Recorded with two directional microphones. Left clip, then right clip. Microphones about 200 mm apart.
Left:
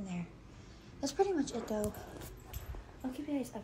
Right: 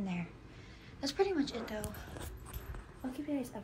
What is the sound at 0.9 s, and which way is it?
Speech, 15° left (ahead or behind).